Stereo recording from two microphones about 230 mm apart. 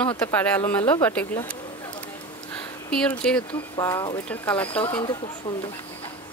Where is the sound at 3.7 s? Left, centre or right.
Centre.